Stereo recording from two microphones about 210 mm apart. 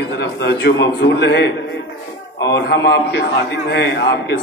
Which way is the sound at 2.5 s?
55° left (ahead or behind).